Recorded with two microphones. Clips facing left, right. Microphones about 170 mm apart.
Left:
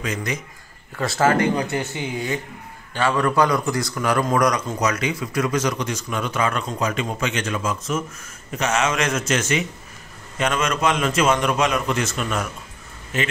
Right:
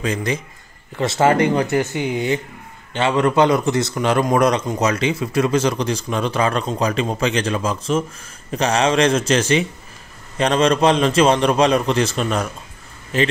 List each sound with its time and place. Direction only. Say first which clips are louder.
0.0 s a man's voice: right 5 dB; 30° right (ahead or behind)